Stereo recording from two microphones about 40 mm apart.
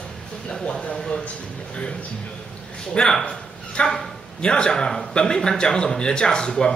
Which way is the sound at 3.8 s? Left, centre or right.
Left.